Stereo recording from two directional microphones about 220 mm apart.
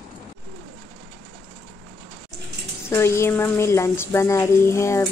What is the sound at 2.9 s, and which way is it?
Speech, 10° left (ahead or behind).